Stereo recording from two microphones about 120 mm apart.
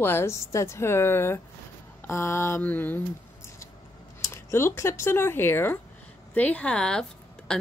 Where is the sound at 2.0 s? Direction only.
20° left (ahead or behind).